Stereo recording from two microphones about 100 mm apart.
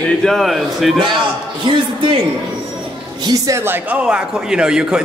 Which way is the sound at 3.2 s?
40° right (ahead or behind).